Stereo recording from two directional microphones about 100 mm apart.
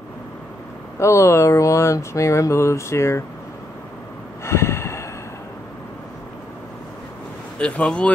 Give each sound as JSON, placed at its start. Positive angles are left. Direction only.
{"t": 0.9, "sound": "speech", "side_deg": 30}
{"t": 4.5, "sound": "snort", "side_deg": 30}
{"t": 7.5, "sound": "speech", "side_deg": 10}